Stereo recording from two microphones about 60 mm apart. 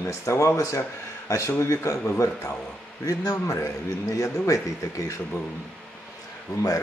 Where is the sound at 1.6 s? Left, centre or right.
Left.